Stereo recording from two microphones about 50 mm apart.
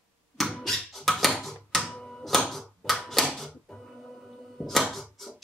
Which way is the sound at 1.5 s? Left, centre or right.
Centre.